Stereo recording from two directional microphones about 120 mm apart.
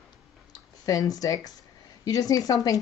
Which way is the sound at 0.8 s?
30° left (ahead or behind).